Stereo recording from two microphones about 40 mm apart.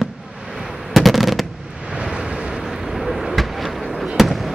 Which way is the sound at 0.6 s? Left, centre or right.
Centre.